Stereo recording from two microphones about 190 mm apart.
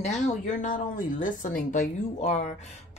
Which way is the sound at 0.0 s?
40° left (ahead or behind).